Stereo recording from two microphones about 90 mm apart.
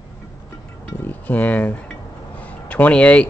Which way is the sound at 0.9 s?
20° left (ahead or behind).